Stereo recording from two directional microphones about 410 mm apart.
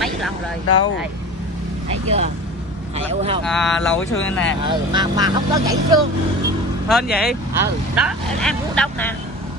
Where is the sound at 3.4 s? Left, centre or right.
Centre.